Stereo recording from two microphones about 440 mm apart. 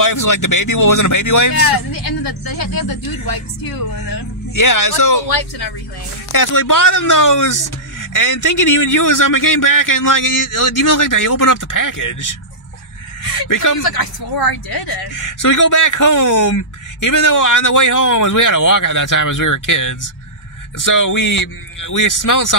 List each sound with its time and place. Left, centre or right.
0.0 s speech: left
2.2 s speech: left
4.6 s speech: left
6.3 s speech: left
13.5 s speech: left
14.4 s speech: left